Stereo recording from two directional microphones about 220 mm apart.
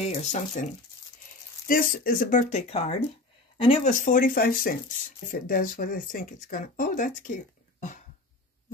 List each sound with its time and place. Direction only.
0.1 s speech: 30° left (ahead or behind)
1.7 s speech: 40° left (ahead or behind)